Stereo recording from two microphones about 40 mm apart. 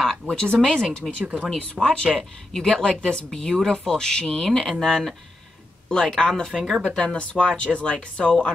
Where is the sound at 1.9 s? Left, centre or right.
Centre.